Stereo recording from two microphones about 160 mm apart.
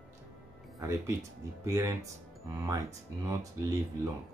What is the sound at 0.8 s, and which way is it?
Speech, 20° right (ahead or behind).